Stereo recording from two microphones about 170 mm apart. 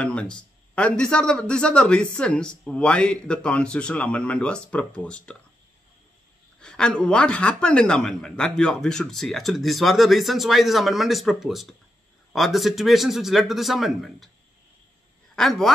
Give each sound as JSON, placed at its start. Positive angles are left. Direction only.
{"t": 0.0, "sound": "speech", "side_deg": 5}
{"t": 6.6, "sound": "speech", "side_deg": 5}
{"t": 15.3, "sound": "a man's voice", "side_deg": 0}